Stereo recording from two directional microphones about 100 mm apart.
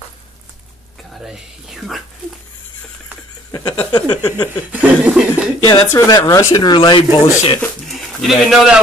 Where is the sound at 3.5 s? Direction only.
50° left (ahead or behind).